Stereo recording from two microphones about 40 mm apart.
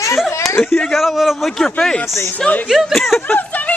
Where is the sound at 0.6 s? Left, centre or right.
Centre.